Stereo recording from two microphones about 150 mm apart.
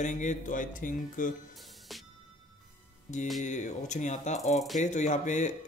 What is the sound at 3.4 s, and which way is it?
A man's voice, 55° left (ahead or behind).